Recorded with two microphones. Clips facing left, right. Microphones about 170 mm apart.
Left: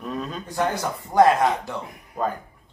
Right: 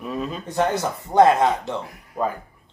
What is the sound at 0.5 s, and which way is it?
Speech, 20° right (ahead or behind).